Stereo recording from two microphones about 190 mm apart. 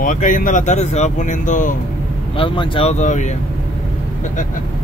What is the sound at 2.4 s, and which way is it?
Speech, 25° left (ahead or behind).